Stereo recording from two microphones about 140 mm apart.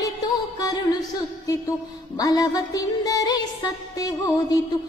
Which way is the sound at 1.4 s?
25° left (ahead or behind).